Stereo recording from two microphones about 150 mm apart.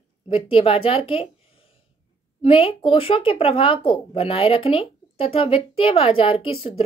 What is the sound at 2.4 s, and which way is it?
Speech, 35° left (ahead or behind).